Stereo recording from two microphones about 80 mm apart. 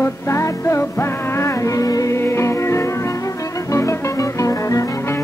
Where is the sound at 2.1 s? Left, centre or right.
Left.